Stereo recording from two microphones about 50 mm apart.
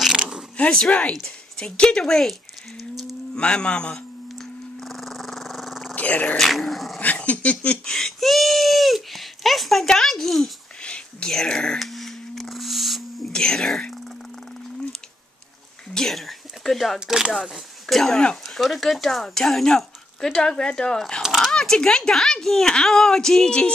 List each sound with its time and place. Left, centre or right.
0.7 s speech: centre
2.8 s livestock: centre
3.3 s speech: centre
4.4 s dog: centre
5.9 s a sound: left
6.3 s speech: centre
7.0 s dog: left
7.8 s a sound: centre
10.8 s whispering: left
11.3 s speech: centre
11.9 s a sound: centre
13.3 s speech: centre
15.9 s speech: centre